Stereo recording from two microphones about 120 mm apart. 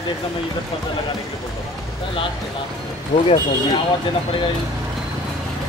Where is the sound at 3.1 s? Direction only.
70° left (ahead or behind).